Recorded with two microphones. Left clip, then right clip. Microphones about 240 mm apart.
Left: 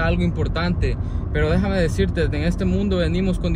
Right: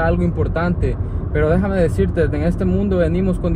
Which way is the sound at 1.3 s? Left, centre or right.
Right.